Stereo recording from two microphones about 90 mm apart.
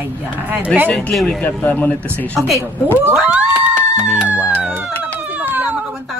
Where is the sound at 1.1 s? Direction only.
Centre (ahead or behind).